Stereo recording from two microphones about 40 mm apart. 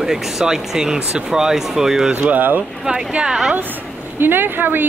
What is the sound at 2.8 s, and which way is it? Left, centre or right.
Speech, centre.